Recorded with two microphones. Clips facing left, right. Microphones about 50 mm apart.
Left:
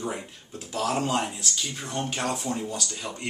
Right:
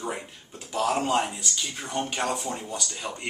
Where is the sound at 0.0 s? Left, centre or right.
Centre.